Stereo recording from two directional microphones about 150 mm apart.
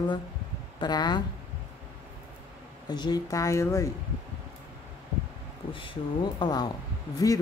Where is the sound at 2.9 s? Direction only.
30° left (ahead or behind).